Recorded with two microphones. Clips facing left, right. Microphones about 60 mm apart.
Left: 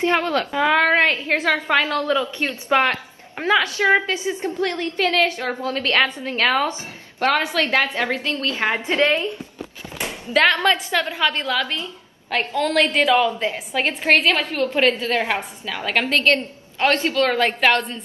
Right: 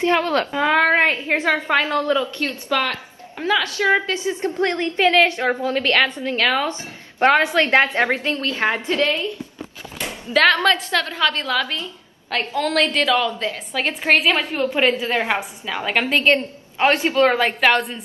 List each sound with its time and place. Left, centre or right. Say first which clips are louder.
0.0 s a woman's voice: right 1 dB; left
0.6 s a woman's voice: even; centre
1.8 s a woman's voice: right 1 dB; right
2.1 s a woman's voice: even; left
4.5 s a woman's voice: right 4 dB; right
6.0 s a woman's voice: right 1 dB; left
7.2 s a woman's voice: right 4 dB; right
8.7 s a woman's voice: left 1 dB; left
10.3 s a woman's voice: right 1 dB; centre
13.0 s a woman's voice: left 2 dB; centre
13.8 s a woman's voice: even; centre
14.3 s a woman's voice: even; centre
17.4 s a woman's voice: right 1 dB; centre